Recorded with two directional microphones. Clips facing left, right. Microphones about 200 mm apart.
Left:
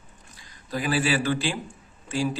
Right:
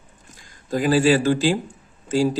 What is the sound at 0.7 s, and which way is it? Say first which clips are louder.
Speech: right 8 dB; 45° right (ahead or behind).